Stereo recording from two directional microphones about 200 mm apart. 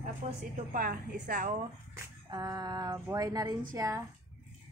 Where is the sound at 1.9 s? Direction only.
20° right (ahead or behind).